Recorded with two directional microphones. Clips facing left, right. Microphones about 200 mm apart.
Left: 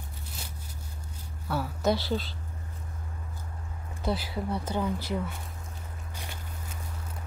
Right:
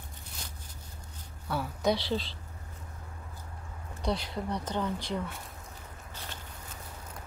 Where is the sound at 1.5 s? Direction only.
5° left (ahead or behind).